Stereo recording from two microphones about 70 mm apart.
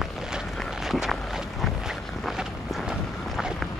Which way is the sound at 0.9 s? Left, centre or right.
Centre.